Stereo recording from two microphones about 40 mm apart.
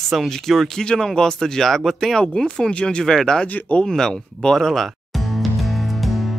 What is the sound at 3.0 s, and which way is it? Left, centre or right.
Speech, centre.